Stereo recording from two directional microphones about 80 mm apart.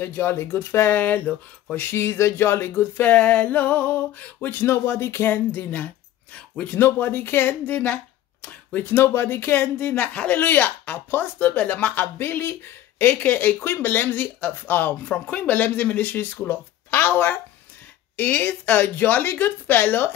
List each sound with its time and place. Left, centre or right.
0.0 s speech: left